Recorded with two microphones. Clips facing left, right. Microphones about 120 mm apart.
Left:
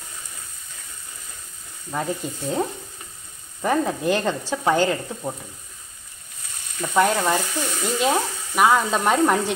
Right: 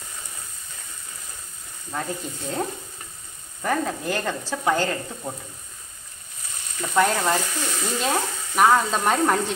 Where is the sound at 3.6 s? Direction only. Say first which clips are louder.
Left 4 dB; 20° left (ahead or behind).